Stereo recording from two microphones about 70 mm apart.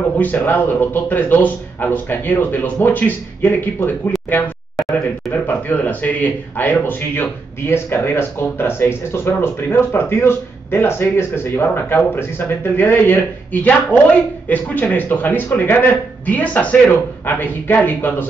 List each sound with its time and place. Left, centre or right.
0.2 s speech: left